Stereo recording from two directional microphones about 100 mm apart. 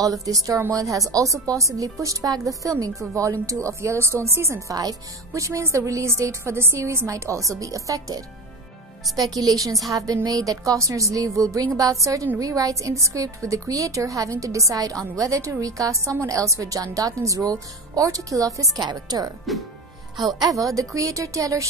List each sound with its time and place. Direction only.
0.0 s speech: 35° right (ahead or behind)
9.3 s speech: 40° right (ahead or behind)
20.2 s a woman's voice: centre (ahead or behind)
20.5 s speech: 35° right (ahead or behind)